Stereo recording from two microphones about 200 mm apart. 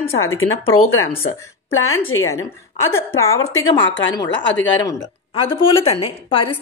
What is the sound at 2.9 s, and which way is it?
A woman's voice, 15° left (ahead or behind).